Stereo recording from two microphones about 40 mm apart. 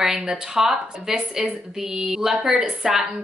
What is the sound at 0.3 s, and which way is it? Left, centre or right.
Speech, centre.